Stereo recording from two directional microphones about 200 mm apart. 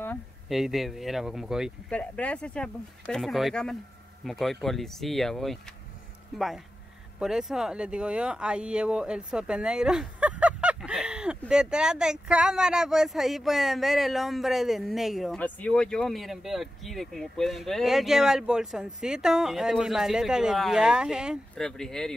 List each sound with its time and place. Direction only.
0.5 s speech: centre (ahead or behind)